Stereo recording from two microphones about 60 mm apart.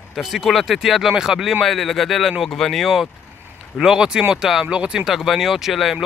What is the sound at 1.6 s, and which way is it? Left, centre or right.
Speech, centre.